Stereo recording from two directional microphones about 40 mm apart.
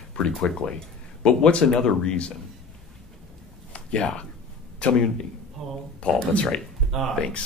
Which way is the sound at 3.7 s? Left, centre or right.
Left.